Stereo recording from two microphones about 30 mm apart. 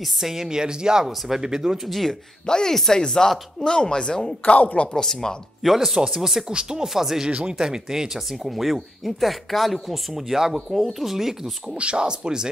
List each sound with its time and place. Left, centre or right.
0.2 s speech: centre
2.4 s speech: left
5.6 s speech: centre
5.9 s speech: centre
6.5 s speech: right
6.9 s speech: centre
8.3 s speech: centre
10.1 s speech: centre
11.7 s speech: right